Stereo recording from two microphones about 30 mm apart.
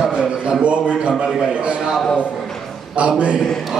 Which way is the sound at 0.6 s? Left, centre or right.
Right.